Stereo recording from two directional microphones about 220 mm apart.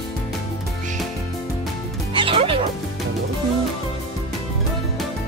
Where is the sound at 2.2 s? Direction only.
25° right (ahead or behind).